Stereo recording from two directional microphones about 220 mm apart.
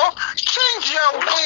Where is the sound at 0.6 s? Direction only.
60° left (ahead or behind).